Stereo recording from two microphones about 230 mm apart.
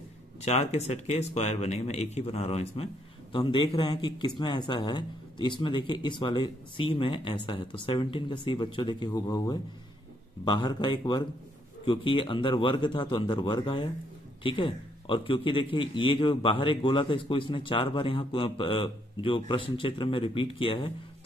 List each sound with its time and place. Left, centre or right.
0.5 s a man's voice: left